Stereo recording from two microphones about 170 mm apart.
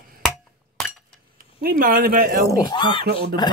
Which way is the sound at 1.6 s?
55° right (ahead or behind).